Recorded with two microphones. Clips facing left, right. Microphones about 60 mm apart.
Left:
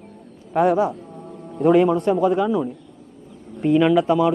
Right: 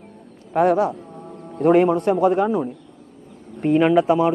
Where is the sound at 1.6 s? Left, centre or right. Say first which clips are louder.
Even; right.